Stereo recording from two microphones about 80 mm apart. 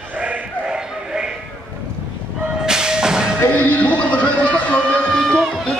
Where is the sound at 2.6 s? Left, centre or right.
Centre.